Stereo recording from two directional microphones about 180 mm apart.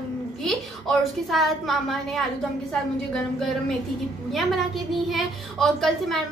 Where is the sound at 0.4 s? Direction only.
Centre (ahead or behind).